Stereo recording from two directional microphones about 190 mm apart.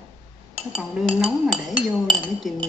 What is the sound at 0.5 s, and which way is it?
Dishes, centre (ahead or behind).